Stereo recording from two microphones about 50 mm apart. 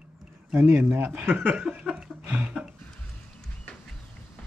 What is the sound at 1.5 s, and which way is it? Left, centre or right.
Chuckle, centre.